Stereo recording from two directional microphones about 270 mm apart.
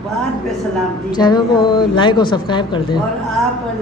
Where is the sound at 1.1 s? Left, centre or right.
Centre.